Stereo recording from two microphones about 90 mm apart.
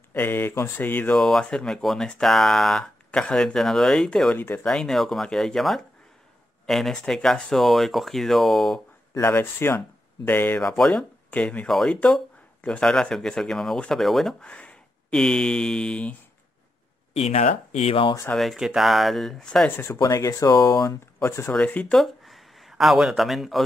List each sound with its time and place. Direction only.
0.1 s speech: 20° left (ahead or behind)
1.1 s speech: 5° left (ahead or behind)
9.2 s speech: 25° left (ahead or behind)
10.6 s speech: 5° left (ahead or behind)
11.2 s speech: 15° left (ahead or behind); by 14.3 s centre (ahead or behind)
14.4 s speech: 15° left (ahead or behind)
18.3 s speech: centre (ahead or behind)
19.9 s speech: 40° left (ahead or behind)
21.5 s speech: 15° left (ahead or behind)
21.9 s speech: centre (ahead or behind)